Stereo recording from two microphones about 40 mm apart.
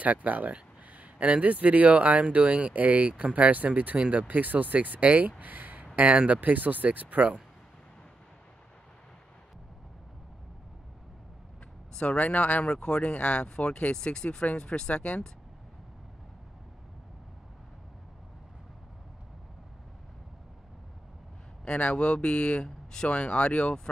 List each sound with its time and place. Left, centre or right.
0.0 s speech: right
3.1 s speech: right
3.3 s speech: right
5.4 s a sound: right
5.9 s speech: right
12.2 s speech: left
12.6 s speech: centre
13.0 s speech: left
13.9 s speech: centre
21.6 s speech: left